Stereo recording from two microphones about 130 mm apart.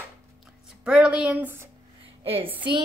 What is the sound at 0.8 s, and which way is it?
Speech, 10° right (ahead or behind).